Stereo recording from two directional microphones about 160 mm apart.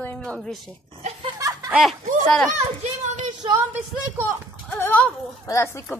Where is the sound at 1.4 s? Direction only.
20° right (ahead or behind).